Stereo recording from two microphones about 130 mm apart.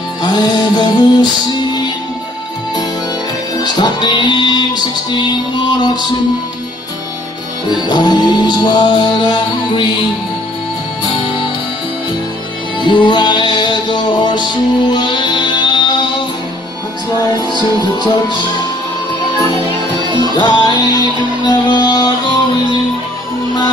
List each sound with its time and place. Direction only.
0.2 s music: 30° left (ahead or behind)
3.6 s music: 30° left (ahead or behind)
7.7 s music: 30° left (ahead or behind)
12.8 s music: 35° left (ahead or behind)
17.9 s music: 35° left (ahead or behind)
20.2 s music: 35° left (ahead or behind)